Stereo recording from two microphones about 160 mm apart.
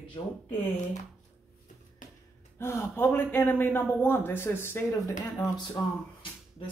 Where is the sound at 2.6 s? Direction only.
15° left (ahead or behind).